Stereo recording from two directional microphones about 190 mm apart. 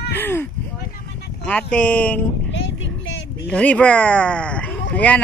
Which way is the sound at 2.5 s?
75° left (ahead or behind).